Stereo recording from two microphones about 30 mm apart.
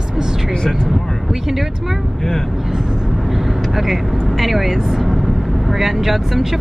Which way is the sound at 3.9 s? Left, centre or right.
Centre.